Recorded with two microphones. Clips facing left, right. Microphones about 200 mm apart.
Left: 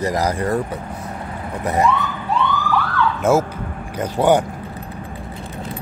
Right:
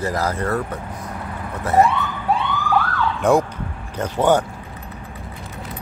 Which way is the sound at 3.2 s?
5° left (ahead or behind).